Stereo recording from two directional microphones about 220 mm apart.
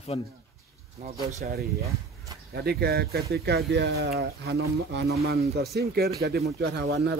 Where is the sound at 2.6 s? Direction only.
45° right (ahead or behind).